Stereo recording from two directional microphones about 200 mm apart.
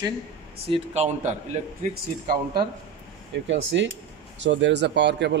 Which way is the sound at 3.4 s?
65° right (ahead or behind).